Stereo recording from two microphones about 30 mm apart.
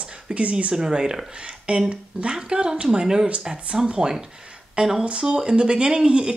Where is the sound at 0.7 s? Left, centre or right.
Right.